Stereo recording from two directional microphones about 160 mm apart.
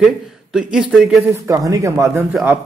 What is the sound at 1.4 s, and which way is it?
Speech, 20° right (ahead or behind).